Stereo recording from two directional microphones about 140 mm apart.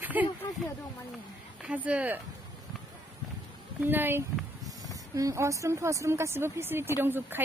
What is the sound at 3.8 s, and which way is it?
Speech, 15° right (ahead or behind).